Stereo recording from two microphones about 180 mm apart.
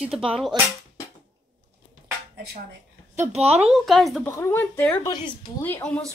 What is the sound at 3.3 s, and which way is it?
Speech, 35° right (ahead or behind).